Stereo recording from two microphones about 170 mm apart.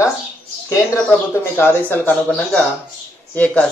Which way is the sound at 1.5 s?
15° left (ahead or behind).